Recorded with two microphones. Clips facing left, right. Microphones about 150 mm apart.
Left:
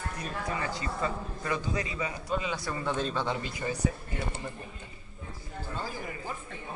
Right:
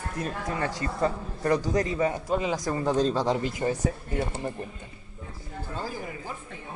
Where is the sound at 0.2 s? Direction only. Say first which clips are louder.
Right 5 dB; 55° right (ahead or behind); by 3.3 s 35° right (ahead or behind).